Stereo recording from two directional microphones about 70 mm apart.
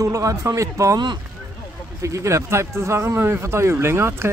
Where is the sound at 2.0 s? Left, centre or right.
Right.